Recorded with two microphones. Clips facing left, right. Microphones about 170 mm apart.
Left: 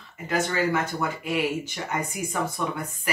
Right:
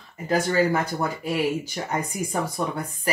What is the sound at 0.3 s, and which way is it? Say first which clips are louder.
Speech: right 3 dB; 35° right (ahead or behind).